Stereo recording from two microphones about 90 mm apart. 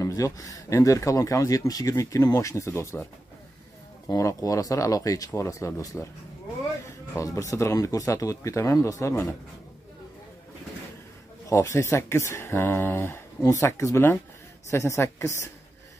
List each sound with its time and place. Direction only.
0.0 s speech: 40° left (ahead or behind)
4.2 s speech: 35° left (ahead or behind)
7.2 s speech: 35° left (ahead or behind)
11.4 s speech: 35° left (ahead or behind)